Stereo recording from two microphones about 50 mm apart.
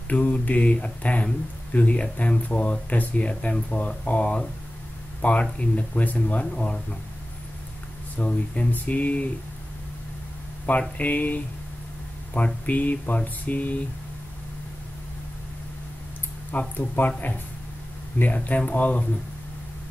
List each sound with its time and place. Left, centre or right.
0.1 s speech: left
8.2 s speech: left
10.7 s speech: left
12.6 s speech: left
16.5 s speech: left
18.3 s speech: left